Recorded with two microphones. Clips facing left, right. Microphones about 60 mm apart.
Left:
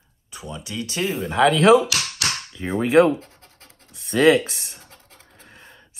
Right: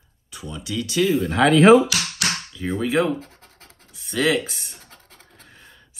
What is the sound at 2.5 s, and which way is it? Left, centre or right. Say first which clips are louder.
Speech: left 1 dB; left.